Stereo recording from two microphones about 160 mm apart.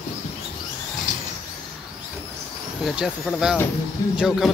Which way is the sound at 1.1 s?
55° left (ahead or behind).